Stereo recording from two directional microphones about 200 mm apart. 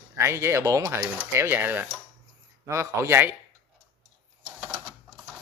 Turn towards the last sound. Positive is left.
turn(degrees=0)  # may be behind; listen again after turning